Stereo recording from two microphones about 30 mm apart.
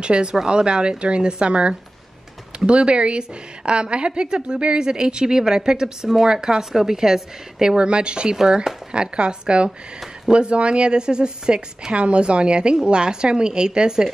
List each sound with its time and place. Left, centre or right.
0.0 s a woman's voice: right
5.4 s a woman's voice: centre
7.6 s a woman's voice: right
11.9 s a woman's voice: right